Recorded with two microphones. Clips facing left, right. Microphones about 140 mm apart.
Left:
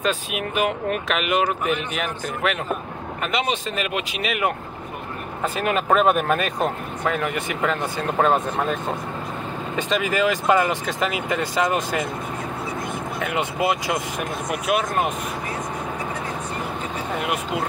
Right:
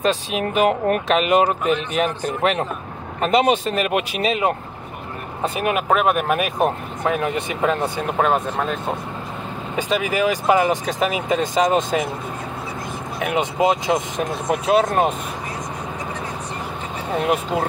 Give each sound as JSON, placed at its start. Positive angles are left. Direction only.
{"t": 0.0, "sound": "speech", "side_deg": -35}
{"t": 1.1, "sound": "speech", "side_deg": -35}
{"t": 4.3, "sound": "speech", "side_deg": -25}
{"t": 5.6, "sound": "speech", "side_deg": -15}
{"t": 5.9, "sound": "speech", "side_deg": -5}
{"t": 9.8, "sound": "speech", "side_deg": -10}
{"t": 13.2, "sound": "speech", "side_deg": -20}